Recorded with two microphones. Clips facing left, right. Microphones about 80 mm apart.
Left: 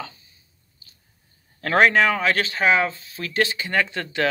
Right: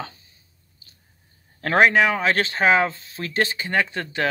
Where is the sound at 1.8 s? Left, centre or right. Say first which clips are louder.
Even; centre.